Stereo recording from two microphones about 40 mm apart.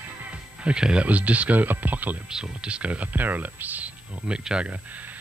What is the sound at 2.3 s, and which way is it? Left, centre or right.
Speech, right.